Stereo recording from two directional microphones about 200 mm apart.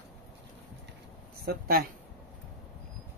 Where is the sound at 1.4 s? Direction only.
50° right (ahead or behind).